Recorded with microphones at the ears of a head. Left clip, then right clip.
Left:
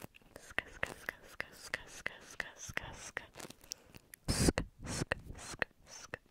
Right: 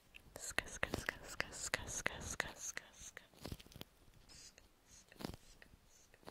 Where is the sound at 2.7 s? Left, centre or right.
Left.